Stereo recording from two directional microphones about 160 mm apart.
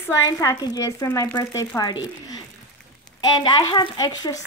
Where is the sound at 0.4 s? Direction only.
20° left (ahead or behind).